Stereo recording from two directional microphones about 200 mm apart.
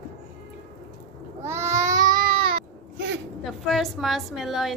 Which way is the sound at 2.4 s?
55° right (ahead or behind).